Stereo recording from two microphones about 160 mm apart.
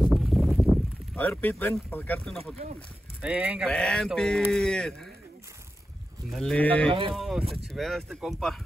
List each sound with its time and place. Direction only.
0.1 s a sound: centre (ahead or behind)
1.1 s speech: 10° left (ahead or behind)
3.2 s speech: 10° right (ahead or behind)
3.7 s speech: 5° left (ahead or behind)
6.3 s speech: 5° left (ahead or behind)
6.9 s speech: 35° right (ahead or behind)
7.2 s speech: centre (ahead or behind)